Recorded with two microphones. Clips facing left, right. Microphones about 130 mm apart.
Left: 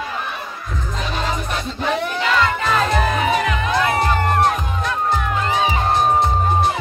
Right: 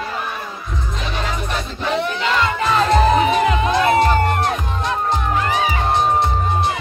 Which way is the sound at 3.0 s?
30° right (ahead or behind).